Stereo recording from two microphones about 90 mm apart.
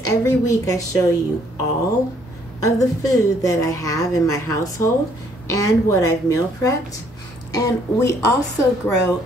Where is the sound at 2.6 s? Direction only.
40° left (ahead or behind).